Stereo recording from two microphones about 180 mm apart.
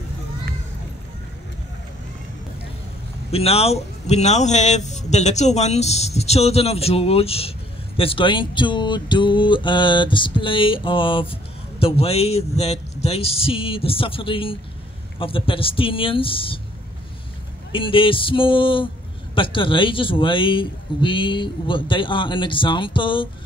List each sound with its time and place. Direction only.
3.3 s a man's voice: 35° left (ahead or behind)
17.7 s a man's voice: 30° left (ahead or behind)